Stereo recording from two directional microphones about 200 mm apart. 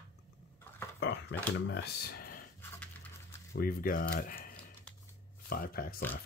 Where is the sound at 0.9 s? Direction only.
60° left (ahead or behind).